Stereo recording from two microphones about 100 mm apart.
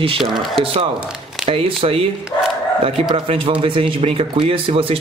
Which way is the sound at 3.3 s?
65° right (ahead or behind).